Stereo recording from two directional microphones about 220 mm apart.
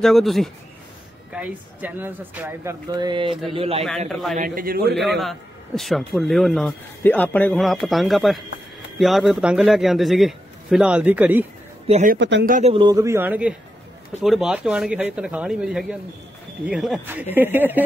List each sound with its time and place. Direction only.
0.0 s a man's voice: centre (ahead or behind); by 3.8 s 25° right (ahead or behind)
4.1 s a man's voice: centre (ahead or behind)
4.4 s a man's voice: 40° right (ahead or behind)
4.9 s a man's voice: centre (ahead or behind)
11.9 s speech: 35° right (ahead or behind)
12.2 s a man's voice: 55° right (ahead or behind)
12.4 s speech: 35° right (ahead or behind)
12.7 s a man's voice: 15° right (ahead or behind)